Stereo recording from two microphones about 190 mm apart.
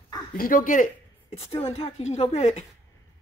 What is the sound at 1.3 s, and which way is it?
A woman's voice, 30° left (ahead or behind).